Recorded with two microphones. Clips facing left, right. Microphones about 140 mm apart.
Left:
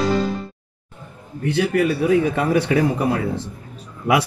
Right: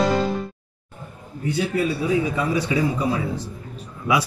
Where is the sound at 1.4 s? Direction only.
75° left (ahead or behind).